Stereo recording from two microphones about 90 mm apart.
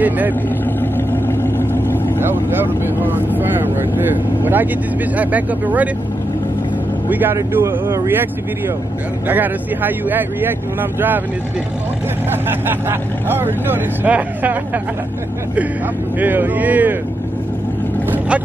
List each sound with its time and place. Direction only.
0.0 s speech: 20° right (ahead or behind)
0.7 s vehicle: 25° left (ahead or behind)
2.1 s speech: 20° right (ahead or behind)
7.1 s speech: 20° right (ahead or behind)
12.3 s speech: 25° right (ahead or behind)
16.2 s speech: 20° right (ahead or behind)
18.0 s vehicle: 20° right (ahead or behind)